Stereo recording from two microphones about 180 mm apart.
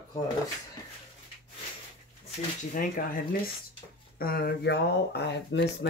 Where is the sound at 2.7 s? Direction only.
50° left (ahead or behind).